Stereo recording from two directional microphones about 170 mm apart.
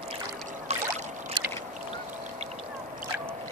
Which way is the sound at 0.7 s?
40° right (ahead or behind).